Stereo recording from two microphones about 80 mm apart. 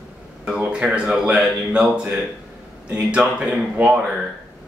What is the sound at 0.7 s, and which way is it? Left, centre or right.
Speech, centre.